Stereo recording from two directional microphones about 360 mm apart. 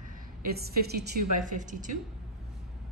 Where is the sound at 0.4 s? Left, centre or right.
Right.